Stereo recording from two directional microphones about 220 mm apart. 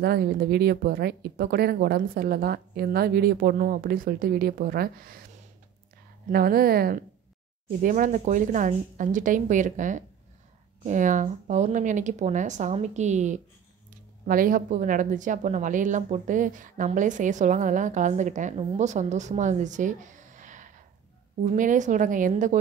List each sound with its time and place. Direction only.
0.0 s speech: 45° right (ahead or behind)
6.3 s a woman's voice: 40° right (ahead or behind)